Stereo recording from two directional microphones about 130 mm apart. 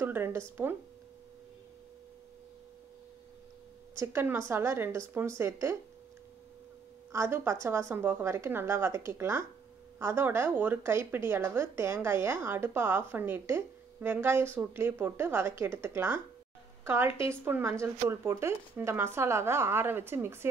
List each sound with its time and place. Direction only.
0.0 s speech: 15° right (ahead or behind)
3.9 s speech: 20° right (ahead or behind)
7.1 s a woman's voice: 20° right (ahead or behind)